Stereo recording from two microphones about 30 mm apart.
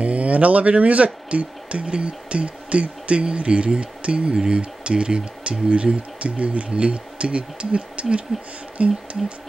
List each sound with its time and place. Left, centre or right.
0.0 s speech: right